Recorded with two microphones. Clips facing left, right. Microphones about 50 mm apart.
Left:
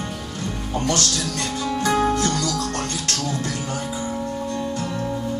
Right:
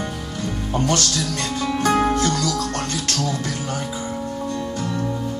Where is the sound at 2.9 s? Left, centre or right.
Left.